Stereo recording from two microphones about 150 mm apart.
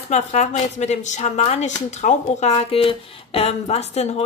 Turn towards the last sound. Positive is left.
turn(degrees=45)  # may be behind; listen again after turning